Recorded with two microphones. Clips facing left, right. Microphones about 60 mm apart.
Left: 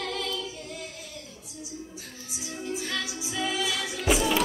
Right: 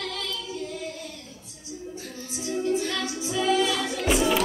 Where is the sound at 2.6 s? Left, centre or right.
Centre.